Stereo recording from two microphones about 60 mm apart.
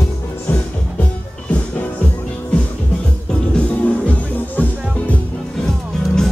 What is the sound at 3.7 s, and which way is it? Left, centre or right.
Music, left.